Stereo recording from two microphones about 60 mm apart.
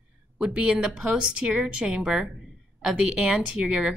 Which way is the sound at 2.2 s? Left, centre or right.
Centre.